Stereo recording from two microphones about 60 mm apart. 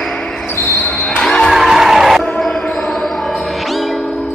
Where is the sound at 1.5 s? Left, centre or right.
Centre.